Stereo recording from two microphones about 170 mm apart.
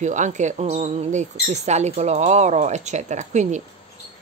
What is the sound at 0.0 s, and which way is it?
Speech, 45° right (ahead or behind).